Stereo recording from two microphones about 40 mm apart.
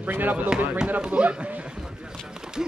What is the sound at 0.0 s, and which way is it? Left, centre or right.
Speech, right.